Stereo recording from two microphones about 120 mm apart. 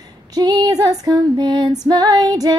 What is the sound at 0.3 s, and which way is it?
Female singing, 35° right (ahead or behind).